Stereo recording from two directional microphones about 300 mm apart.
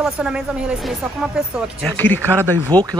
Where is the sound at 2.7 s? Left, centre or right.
Centre.